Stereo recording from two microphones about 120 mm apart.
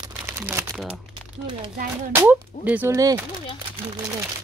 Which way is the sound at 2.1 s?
15° right (ahead or behind).